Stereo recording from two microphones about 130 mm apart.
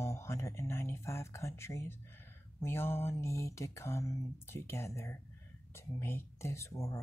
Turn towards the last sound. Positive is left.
turn(degrees=20)  # may be behind; listen again after turning